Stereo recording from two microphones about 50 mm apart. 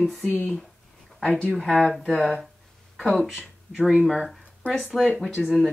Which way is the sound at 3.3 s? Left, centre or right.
Centre.